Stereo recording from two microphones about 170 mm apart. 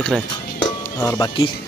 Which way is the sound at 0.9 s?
20° left (ahead or behind).